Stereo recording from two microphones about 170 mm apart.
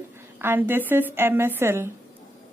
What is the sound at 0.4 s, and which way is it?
A woman's voice, 10° right (ahead or behind).